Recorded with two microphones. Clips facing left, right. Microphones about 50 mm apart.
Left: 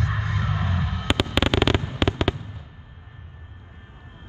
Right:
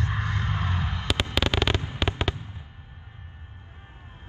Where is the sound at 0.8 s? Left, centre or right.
Right.